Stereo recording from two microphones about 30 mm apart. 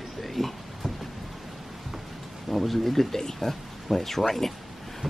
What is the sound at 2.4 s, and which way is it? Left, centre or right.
Speech, centre.